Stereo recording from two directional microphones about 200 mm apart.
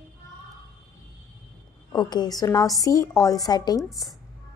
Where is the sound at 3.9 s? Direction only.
Centre (ahead or behind).